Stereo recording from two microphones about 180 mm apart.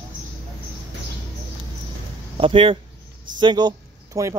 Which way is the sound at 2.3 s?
30° right (ahead or behind).